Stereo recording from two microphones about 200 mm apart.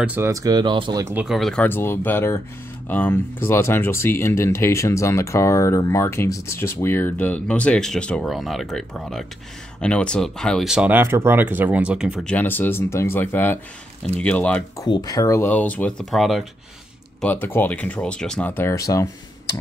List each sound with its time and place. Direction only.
0.0 s speech: 10° right (ahead or behind)
1.1 s speech: centre (ahead or behind)
14.9 s speech: 20° left (ahead or behind)